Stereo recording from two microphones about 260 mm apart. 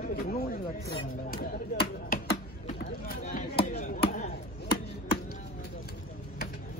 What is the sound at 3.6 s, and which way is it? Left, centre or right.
Chop, left.